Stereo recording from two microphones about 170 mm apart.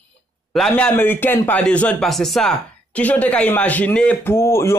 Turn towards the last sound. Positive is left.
turn(degrees=15)  # may be behind; listen again after turning